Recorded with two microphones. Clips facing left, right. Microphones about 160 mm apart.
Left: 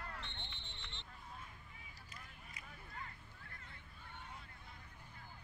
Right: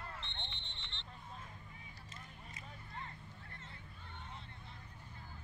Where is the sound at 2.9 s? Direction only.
30° right (ahead or behind).